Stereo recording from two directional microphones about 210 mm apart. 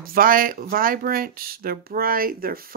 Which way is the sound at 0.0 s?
45° right (ahead or behind).